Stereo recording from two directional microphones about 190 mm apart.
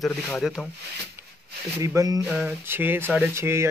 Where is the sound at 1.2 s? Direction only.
10° right (ahead or behind).